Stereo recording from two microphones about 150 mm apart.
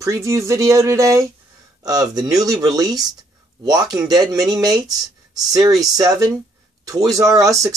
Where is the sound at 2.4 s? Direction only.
25° right (ahead or behind).